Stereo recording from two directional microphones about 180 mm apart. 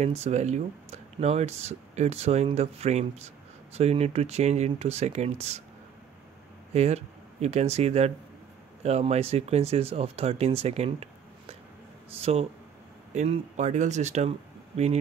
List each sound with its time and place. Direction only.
0.0 s speech: 35° right (ahead or behind)
6.7 s speech: 35° right (ahead or behind)